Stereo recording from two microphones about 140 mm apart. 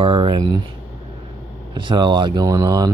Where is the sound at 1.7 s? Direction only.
35° right (ahead or behind).